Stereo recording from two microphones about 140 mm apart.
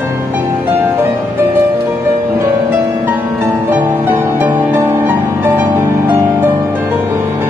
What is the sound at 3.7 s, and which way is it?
Music, 15° right (ahead or behind).